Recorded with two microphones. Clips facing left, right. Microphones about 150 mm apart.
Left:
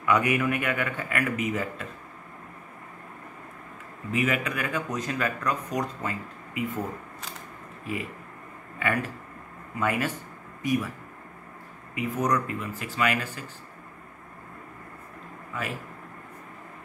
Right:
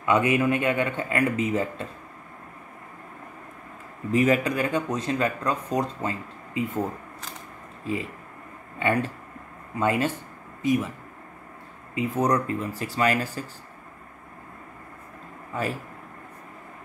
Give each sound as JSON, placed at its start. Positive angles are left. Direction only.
{"t": 0.0, "sound": "speech", "side_deg": -25}
{"t": 4.1, "sound": "speech", "side_deg": -35}
{"t": 7.9, "sound": "speech", "side_deg": -30}
{"t": 11.9, "sound": "speech", "side_deg": -30}